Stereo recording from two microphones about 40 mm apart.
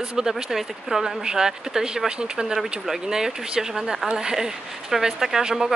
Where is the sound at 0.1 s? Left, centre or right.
Centre.